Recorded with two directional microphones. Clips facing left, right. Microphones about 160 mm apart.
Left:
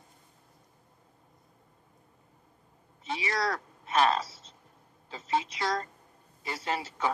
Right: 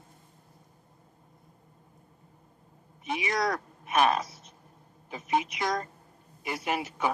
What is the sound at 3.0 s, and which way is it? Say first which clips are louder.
Speech: right 2 dB; 15° right (ahead or behind).